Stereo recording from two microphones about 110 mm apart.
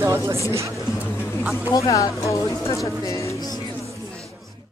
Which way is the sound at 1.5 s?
30° left (ahead or behind).